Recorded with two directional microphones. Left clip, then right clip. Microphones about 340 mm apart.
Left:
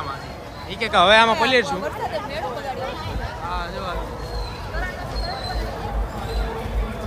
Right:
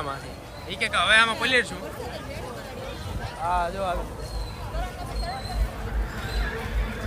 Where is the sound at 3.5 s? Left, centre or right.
Centre.